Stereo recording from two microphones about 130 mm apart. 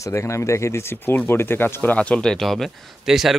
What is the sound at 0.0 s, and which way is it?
Speech, 20° left (ahead or behind).